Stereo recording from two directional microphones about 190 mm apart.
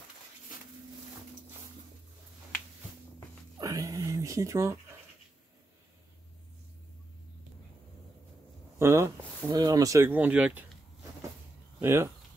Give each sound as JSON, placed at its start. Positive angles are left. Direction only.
{"t": 3.5, "sound": "a sound", "side_deg": -15}
{"t": 8.7, "sound": "speech", "side_deg": -15}
{"t": 11.8, "sound": "speech", "side_deg": -15}